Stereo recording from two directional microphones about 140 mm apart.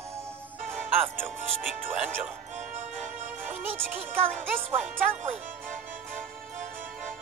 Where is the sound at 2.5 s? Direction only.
60° right (ahead or behind).